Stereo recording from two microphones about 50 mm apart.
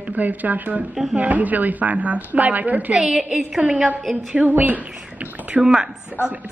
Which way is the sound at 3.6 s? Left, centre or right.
Right.